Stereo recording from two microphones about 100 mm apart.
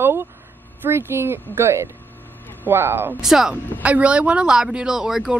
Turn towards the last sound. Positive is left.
turn(degrees=-5)  # may be behind; listen again after turning